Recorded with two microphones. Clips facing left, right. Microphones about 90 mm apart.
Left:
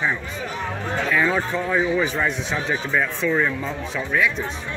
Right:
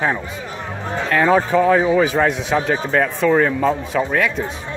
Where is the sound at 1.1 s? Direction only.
55° right (ahead or behind).